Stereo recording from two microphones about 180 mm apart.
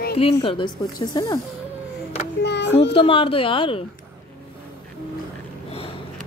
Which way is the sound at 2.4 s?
70° left (ahead or behind).